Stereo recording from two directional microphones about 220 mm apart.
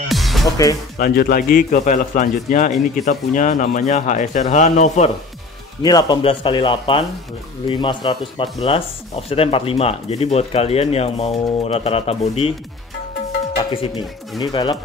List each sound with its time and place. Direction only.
0.1 s music: centre (ahead or behind)
0.9 s speech: 45° left (ahead or behind)
5.8 s speech: 20° left (ahead or behind)
13.6 s a sound: 20° left (ahead or behind)
14.4 s speech: 20° left (ahead or behind)